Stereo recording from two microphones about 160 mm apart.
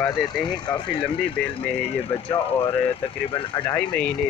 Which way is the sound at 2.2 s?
35° left (ahead or behind).